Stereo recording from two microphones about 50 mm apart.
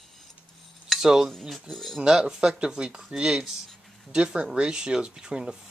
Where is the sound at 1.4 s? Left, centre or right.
Centre.